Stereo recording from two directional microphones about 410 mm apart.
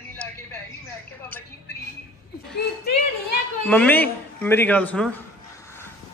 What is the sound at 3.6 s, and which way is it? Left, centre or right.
A man's voice, centre.